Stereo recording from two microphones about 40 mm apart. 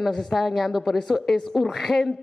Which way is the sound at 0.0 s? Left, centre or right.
Centre.